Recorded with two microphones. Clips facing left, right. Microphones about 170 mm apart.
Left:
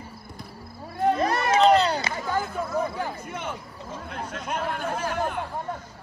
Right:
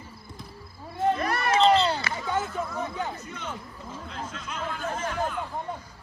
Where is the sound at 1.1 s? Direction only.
25° left (ahead or behind).